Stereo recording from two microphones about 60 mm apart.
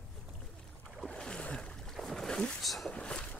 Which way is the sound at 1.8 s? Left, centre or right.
Centre.